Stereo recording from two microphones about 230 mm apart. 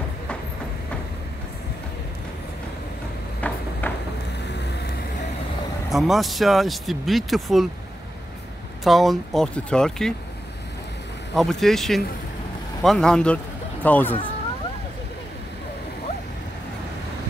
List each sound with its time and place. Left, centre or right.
3.3 s a sound: centre
4.5 s music: left
5.9 s speech: centre
8.8 s speech: centre
11.3 s speech: centre